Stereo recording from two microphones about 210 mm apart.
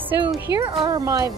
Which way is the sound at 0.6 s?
25° right (ahead or behind).